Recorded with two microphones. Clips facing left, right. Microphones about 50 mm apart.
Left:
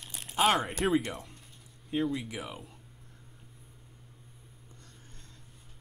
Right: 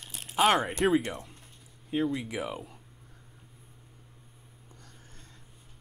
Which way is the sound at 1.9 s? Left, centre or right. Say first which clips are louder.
Right 2 dB; centre.